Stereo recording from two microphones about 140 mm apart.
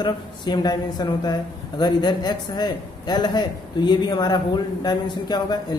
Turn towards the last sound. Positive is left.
turn(degrees=30)  # may be behind; listen again after turning